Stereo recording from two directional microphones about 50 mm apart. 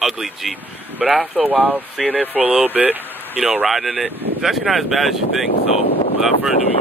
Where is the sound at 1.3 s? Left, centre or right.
Right.